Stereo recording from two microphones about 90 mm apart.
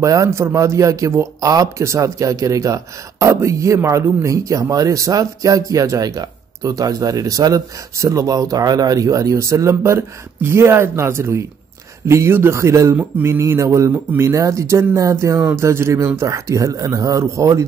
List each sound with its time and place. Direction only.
0.0 s speech: 35° right (ahead or behind)